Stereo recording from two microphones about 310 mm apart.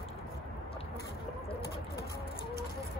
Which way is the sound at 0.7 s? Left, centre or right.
Centre.